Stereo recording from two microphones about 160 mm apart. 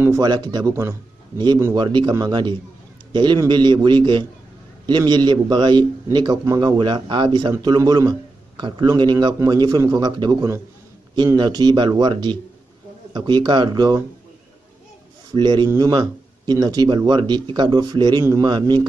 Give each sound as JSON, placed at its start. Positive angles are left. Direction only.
{"t": 0.0, "sound": "speech", "side_deg": -20}
{"t": 15.3, "sound": "speech", "side_deg": -25}